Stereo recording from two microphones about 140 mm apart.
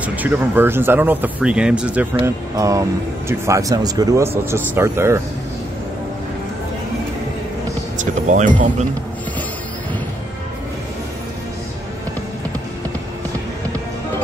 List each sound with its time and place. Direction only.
0.0 s speech: 15° right (ahead or behind)
2.5 s speech: 25° right (ahead or behind)
8.0 s music: 60° right (ahead or behind)